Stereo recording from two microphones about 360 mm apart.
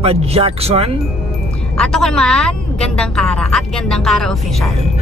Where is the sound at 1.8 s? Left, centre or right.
Centre.